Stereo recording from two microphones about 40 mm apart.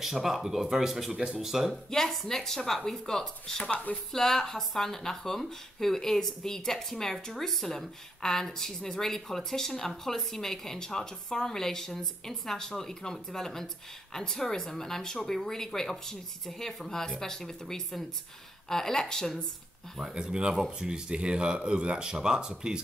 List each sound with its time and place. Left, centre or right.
0.0 s speech: centre
1.7 s speech: centre
20.0 s speech: centre